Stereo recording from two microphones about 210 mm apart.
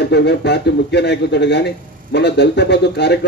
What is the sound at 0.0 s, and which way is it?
A man's voice, 55° left (ahead or behind).